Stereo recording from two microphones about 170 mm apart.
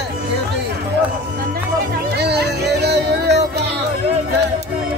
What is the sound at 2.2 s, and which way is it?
Music, 75° right (ahead or behind).